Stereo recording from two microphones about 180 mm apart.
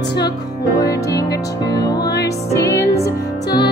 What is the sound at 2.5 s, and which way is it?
Music, 15° left (ahead or behind).